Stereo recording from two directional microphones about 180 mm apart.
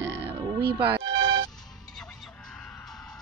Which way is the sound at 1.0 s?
90° right.